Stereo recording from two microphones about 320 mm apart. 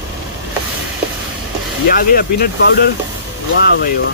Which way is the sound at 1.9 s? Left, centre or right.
Left.